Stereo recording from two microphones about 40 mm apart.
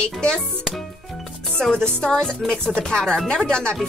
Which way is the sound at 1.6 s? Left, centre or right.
Centre.